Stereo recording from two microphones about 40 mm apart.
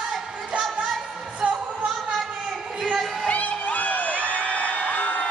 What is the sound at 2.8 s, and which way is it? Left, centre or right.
Music, centre.